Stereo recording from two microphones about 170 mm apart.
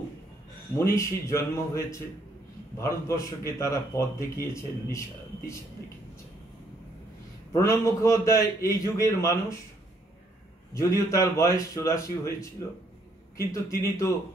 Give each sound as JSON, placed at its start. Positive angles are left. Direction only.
{"t": 0.7, "sound": "a man's voice", "side_deg": 15}
{"t": 7.5, "sound": "a man's voice", "side_deg": 15}
{"t": 10.7, "sound": "a man's voice", "side_deg": 15}